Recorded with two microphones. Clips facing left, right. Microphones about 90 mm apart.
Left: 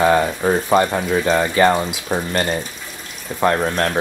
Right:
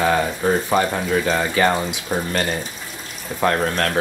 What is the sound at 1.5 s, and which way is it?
Speech, 25° left (ahead or behind).